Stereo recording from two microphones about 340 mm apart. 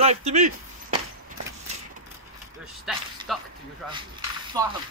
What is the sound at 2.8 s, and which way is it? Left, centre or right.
Speech, centre.